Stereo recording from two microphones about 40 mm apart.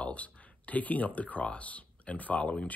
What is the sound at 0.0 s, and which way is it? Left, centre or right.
Speech, left.